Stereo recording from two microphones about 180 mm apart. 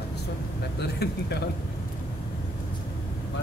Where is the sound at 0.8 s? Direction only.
65° left (ahead or behind).